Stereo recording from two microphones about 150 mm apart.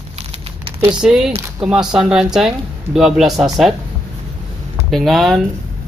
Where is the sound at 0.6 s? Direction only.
30° right (ahead or behind).